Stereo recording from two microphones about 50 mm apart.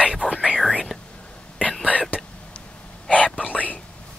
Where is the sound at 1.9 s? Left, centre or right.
Left.